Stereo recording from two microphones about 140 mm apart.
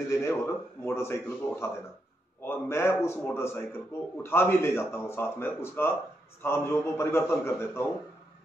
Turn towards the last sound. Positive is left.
turn(degrees=15)  # may be behind; listen again after turning